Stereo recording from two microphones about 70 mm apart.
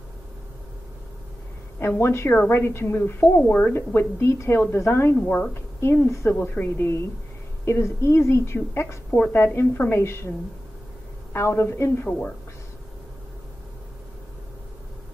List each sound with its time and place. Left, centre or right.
1.8 s a woman's voice: left
3.7 s a woman's voice: left
5.1 s speech: left
5.5 s a woman's voice: left
6.3 s a woman's voice: left
9.1 s a woman's voice: left
11.3 s a woman's voice: left
12.1 s speech: centre